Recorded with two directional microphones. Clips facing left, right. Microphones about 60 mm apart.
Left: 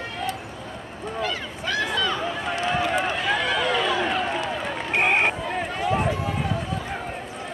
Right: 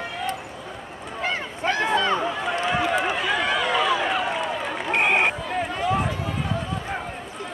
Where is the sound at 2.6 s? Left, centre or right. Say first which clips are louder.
Even; centre.